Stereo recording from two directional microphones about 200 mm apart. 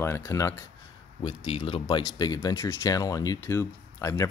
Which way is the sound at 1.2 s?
25° left (ahead or behind).